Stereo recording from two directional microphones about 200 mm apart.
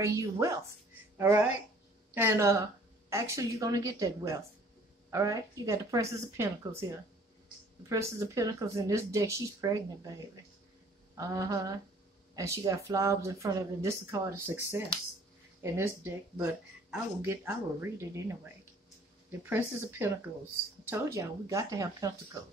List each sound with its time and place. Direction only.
0.0 s speech: 15° right (ahead or behind)
7.9 s speech: 15° right (ahead or behind)
20.9 s speech: 15° right (ahead or behind)